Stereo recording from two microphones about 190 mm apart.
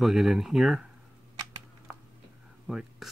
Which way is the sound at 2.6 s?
Centre (ahead or behind).